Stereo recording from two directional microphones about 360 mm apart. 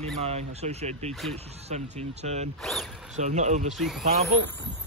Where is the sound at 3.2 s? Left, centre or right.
Centre.